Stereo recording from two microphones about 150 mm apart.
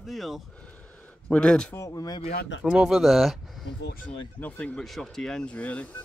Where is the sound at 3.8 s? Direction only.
70° left (ahead or behind).